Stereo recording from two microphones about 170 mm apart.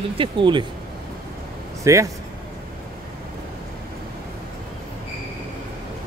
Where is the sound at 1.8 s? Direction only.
20° right (ahead or behind).